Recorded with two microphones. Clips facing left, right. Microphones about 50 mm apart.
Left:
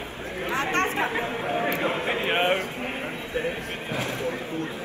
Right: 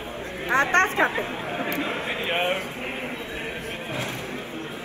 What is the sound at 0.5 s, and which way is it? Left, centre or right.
Chatter, right.